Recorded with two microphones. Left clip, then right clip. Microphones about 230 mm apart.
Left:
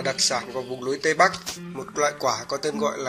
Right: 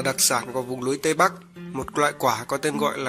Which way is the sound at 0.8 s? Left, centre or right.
Right.